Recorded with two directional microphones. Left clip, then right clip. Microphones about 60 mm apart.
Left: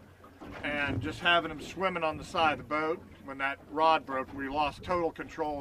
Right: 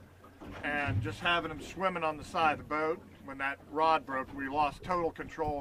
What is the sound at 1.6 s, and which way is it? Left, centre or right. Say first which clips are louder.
Speech: left 1 dB; right.